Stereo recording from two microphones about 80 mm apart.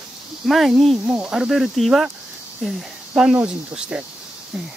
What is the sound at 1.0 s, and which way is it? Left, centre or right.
Speech, centre.